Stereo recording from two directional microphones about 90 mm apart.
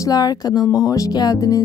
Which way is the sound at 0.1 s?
45° left (ahead or behind).